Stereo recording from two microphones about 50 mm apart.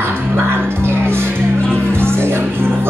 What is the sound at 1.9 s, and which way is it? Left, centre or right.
Music, right.